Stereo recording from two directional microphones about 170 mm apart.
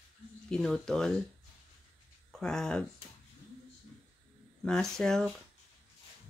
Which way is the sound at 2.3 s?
5° left (ahead or behind).